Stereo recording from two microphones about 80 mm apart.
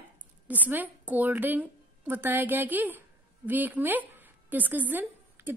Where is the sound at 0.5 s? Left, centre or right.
Right.